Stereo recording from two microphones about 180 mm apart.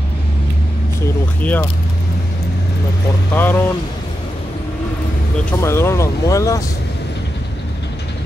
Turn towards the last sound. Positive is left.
turn(degrees=20)  # may be behind; listen again after turning